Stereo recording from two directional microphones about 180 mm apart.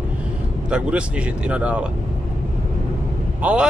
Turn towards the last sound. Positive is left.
turn(degrees=-10)  # may be behind; listen again after turning